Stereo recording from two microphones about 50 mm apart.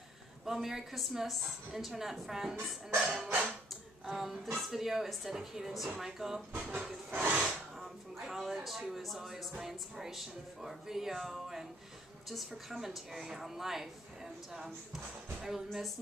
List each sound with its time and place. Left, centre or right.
0.5 s a woman's voice: centre
6.5 s speech: right
7.2 s speech: centre
7.8 s music: centre
8.9 s a woman's voice: centre